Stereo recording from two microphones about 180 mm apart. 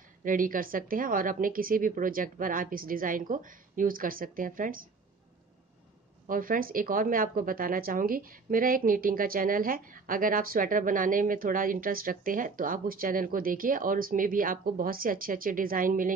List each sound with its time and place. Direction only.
0.2 s speech: 50° right (ahead or behind)
6.2 s speech: 50° right (ahead or behind)